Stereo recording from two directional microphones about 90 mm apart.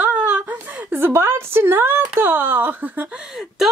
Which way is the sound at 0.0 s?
15° right (ahead or behind).